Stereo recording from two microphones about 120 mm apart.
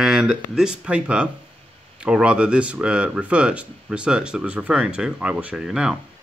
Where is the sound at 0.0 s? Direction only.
5° right (ahead or behind).